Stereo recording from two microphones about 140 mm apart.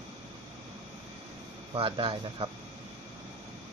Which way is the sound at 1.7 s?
40° right (ahead or behind).